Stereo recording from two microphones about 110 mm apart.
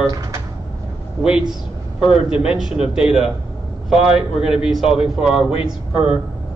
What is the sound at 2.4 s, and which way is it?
Speech, 5° right (ahead or behind).